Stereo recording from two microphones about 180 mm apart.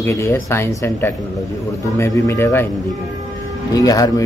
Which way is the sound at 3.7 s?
20° left (ahead or behind).